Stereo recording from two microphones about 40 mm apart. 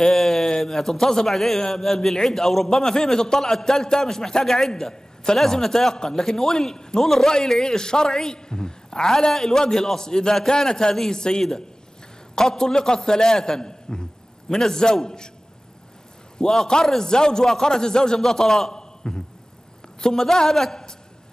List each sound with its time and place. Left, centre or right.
0.0 s a man's voice: centre
16.3 s a man's voice: centre